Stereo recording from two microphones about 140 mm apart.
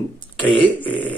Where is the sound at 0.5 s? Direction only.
10° left (ahead or behind).